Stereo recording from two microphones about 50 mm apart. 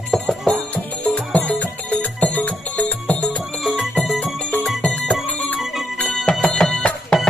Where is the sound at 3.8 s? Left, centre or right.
Centre.